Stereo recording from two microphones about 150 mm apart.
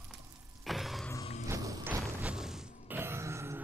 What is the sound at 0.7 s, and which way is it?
Music, centre (ahead or behind).